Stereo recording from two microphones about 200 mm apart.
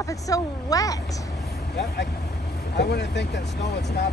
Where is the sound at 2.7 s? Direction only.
60° left (ahead or behind).